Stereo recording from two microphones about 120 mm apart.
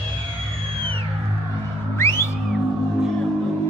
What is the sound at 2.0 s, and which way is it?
Music, 20° left (ahead or behind).